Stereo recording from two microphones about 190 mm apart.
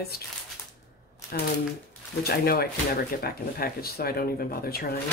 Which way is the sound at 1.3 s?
55° left (ahead or behind).